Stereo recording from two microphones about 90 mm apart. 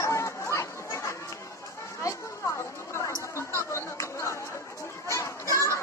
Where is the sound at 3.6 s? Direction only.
30° left (ahead or behind).